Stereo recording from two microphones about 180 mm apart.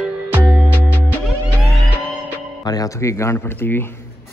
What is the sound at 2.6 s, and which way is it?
Speech, 20° left (ahead or behind).